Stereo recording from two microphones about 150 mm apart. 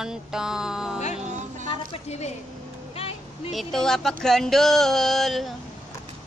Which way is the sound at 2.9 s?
45° left (ahead or behind).